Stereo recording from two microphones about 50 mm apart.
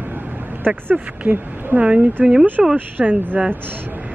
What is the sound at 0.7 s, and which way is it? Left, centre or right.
Speech, right.